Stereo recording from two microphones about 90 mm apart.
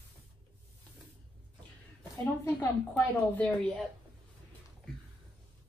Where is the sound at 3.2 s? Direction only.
15° left (ahead or behind).